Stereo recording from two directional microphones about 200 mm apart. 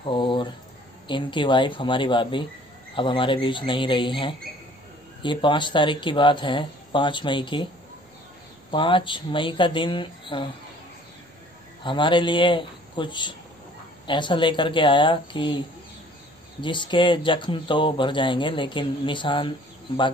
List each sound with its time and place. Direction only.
0.0 s a sound: 25° left (ahead or behind)
1.0 s speech: 25° left (ahead or behind)
8.7 s speech: 25° left (ahead or behind)
11.8 s speech: 25° left (ahead or behind)
16.6 s speech: 25° left (ahead or behind)